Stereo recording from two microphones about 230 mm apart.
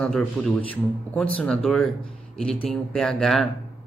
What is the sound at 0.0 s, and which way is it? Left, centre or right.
Speech, centre.